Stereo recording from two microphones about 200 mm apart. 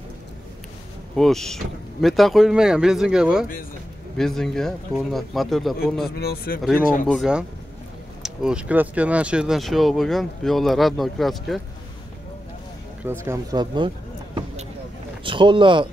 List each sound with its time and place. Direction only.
1.1 s speech: centre (ahead or behind)
6.1 s speech: 50° left (ahead or behind)
7.1 s speech: centre (ahead or behind)
13.0 s speech: 15° right (ahead or behind)